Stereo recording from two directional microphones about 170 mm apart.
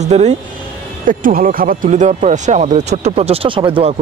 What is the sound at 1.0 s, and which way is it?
Speech, 55° right (ahead or behind).